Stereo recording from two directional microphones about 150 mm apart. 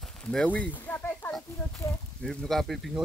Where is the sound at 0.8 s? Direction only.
10° left (ahead or behind).